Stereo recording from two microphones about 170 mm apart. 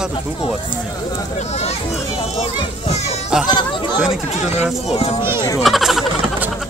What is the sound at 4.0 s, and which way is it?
Speech, 5° right (ahead or behind).